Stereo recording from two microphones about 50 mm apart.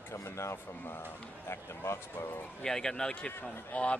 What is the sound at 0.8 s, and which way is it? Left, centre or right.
Speech, left.